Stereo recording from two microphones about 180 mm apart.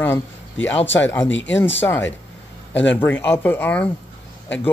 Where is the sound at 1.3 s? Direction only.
90° left.